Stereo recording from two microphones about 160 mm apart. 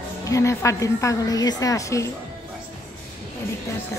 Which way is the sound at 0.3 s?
15° left (ahead or behind).